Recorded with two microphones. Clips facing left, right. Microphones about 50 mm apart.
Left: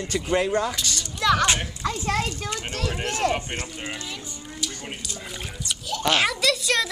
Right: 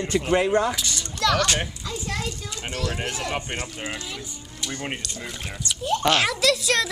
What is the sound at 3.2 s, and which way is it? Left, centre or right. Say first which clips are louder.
Speech: left 6 dB; left.